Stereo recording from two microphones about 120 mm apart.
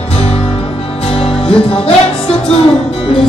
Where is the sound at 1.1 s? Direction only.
50° left (ahead or behind).